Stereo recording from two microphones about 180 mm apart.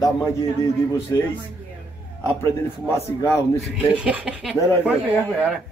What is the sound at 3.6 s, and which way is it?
Speech, 5° right (ahead or behind).